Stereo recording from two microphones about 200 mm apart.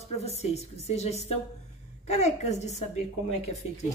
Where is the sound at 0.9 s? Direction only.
35° left (ahead or behind).